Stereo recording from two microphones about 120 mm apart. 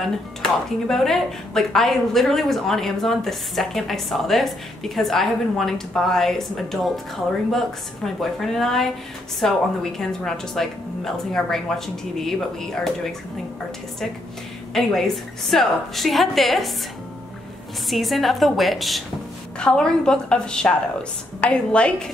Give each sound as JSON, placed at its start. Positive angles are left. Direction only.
{"t": 0.0, "sound": "speech", "side_deg": 5}
{"t": 14.7, "sound": "speech", "side_deg": 5}
{"t": 17.8, "sound": "a woman's voice", "side_deg": 0}